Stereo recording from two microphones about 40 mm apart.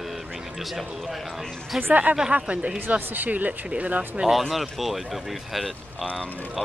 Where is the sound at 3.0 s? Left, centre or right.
Right.